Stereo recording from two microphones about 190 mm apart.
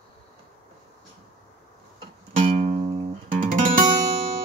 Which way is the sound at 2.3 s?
40° right (ahead or behind).